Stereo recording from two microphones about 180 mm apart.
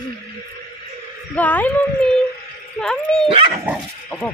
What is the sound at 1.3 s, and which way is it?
Speech, 10° left (ahead or behind).